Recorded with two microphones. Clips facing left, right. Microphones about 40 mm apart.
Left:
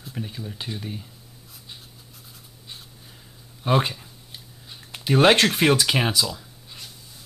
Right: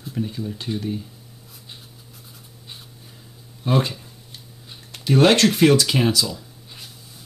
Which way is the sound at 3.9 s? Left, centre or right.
Centre.